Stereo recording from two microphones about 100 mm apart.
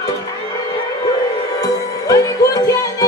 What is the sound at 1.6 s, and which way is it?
Music, 35° left (ahead or behind).